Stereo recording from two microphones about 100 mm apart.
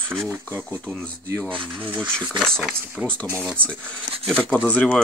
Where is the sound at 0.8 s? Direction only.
10° left (ahead or behind).